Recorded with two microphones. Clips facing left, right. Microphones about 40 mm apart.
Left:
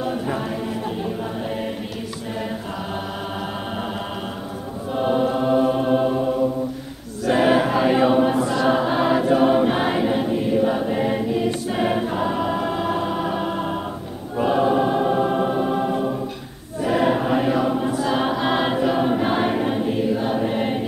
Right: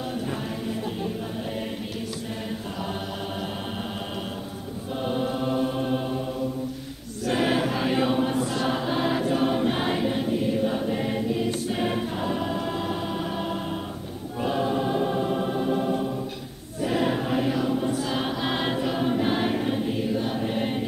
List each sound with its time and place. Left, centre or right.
4.9 s choir: centre
7.2 s choir: centre
17.9 s choir: centre